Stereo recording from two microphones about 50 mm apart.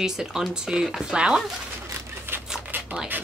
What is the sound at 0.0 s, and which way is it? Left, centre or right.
A woman's voice, centre.